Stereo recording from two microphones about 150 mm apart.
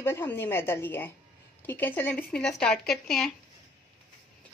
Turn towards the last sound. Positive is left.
turn(degrees=5)  # may be behind; listen again after turning